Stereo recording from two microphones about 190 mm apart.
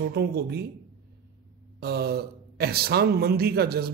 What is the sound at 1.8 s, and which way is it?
A man's voice, 55° right (ahead or behind).